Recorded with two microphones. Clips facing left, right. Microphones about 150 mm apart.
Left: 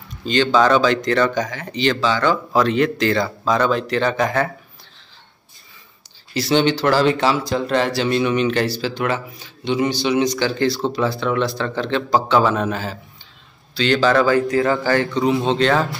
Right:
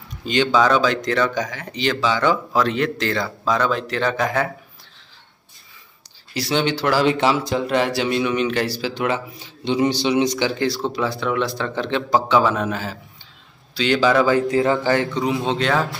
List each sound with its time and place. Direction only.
0.2 s speech: 15° right (ahead or behind)
2.5 s speech: centre (ahead or behind)
6.3 s a man's voice: 10° right (ahead or behind)
7.1 s a man's voice: 20° right (ahead or behind)
10.9 s a man's voice: 10° right (ahead or behind)